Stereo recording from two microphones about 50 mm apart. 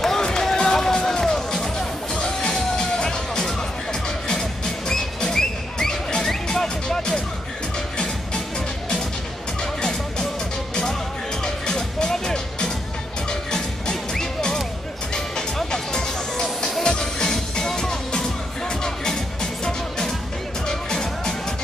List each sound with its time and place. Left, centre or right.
0.0 s music: centre
9.6 s music: centre